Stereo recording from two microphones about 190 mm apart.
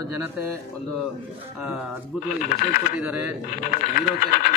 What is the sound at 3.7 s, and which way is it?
Speech, 50° left (ahead or behind).